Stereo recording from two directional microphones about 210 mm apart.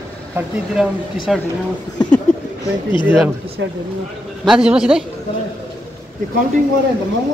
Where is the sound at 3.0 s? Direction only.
5° right (ahead or behind).